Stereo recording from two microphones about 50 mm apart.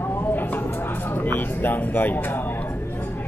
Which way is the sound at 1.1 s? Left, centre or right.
Left.